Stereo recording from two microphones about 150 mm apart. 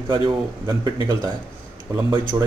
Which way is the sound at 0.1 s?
30° right (ahead or behind).